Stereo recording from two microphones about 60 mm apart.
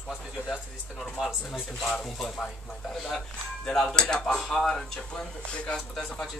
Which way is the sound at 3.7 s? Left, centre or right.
Centre.